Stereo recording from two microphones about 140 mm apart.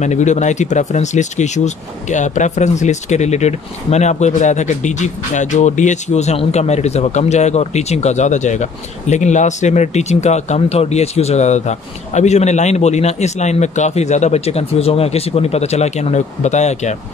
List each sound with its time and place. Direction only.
0.0 s speech: 55° left (ahead or behind)